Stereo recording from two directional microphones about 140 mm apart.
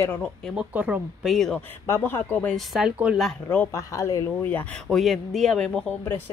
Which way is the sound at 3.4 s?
15° left (ahead or behind).